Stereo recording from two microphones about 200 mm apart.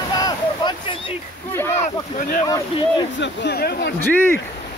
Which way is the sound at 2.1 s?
40° left (ahead or behind).